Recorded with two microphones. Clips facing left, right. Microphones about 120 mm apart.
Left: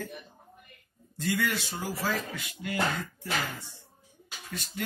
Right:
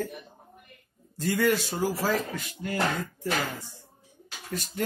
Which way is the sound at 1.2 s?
40° right (ahead or behind).